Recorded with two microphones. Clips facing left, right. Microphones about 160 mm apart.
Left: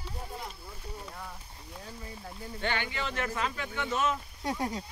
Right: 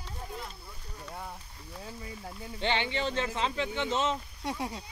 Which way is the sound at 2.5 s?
20° right (ahead or behind).